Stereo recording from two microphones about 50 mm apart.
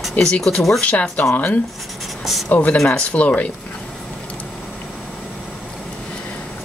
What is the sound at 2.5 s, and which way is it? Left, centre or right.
Speech, left.